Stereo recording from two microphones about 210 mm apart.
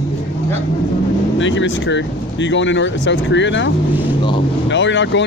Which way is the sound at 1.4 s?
60° left (ahead or behind).